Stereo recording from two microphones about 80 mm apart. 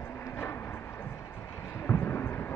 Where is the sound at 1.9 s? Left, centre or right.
Left.